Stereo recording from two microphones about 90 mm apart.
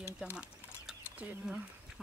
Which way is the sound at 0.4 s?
10° right (ahead or behind).